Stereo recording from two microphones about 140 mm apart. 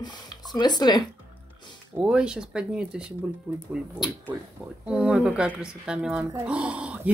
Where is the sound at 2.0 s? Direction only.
5° right (ahead or behind).